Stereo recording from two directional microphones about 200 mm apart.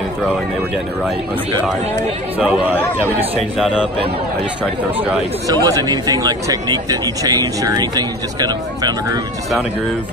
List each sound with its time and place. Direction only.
2.3 s speech: 10° right (ahead or behind)
5.5 s speech: 20° right (ahead or behind)